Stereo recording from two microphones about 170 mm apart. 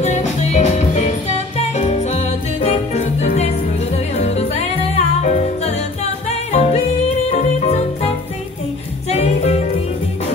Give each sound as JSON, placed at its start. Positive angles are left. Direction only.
{"t": 0.0, "sound": "music", "side_deg": 45}
{"t": 6.5, "sound": "yodeling", "side_deg": 40}
{"t": 7.2, "sound": "music", "side_deg": 35}
{"t": 9.1, "sound": "music", "side_deg": 40}